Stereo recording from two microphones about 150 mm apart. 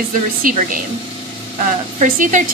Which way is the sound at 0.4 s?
65° right (ahead or behind).